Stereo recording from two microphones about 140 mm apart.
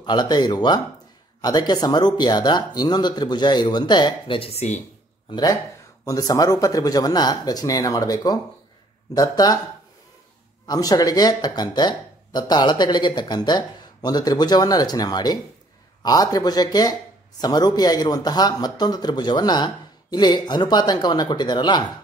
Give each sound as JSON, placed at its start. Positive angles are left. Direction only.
{"t": 0.0, "sound": "speech", "side_deg": 30}
{"t": 5.3, "sound": "speech", "side_deg": 25}
{"t": 10.7, "sound": "speech", "side_deg": 25}